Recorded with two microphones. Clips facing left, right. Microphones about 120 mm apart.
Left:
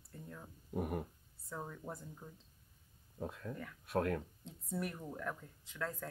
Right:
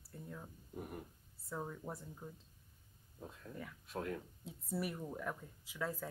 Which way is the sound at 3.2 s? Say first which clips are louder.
Left 5 dB; 70° left (ahead or behind).